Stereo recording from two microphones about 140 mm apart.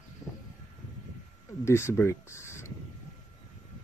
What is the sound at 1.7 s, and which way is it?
Speech, 20° left (ahead or behind).